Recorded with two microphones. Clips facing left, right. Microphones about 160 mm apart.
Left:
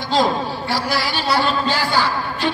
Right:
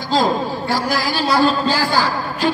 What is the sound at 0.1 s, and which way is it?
A man's voice, 45° right (ahead or behind).